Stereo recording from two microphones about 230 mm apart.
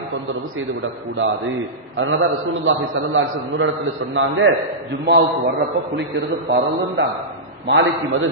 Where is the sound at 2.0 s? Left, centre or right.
Right.